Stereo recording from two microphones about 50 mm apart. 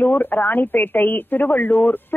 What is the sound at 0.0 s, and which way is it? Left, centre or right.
Speech, left.